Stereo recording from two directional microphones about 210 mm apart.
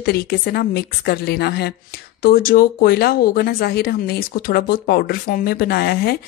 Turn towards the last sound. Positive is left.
turn(degrees=45)  # may be behind; listen again after turning